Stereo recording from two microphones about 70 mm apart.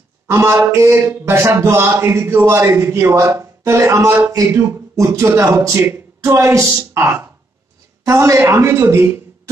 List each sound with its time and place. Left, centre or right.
0.3 s a man's voice: right